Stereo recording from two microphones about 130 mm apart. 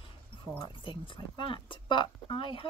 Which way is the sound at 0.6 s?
40° left (ahead or behind).